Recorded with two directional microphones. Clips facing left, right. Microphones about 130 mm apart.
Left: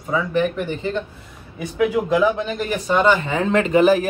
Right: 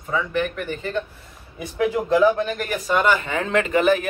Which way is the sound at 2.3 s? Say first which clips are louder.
Left 1 dB; 20° left (ahead or behind).